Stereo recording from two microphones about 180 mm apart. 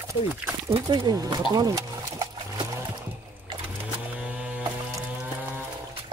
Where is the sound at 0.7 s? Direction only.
25° right (ahead or behind).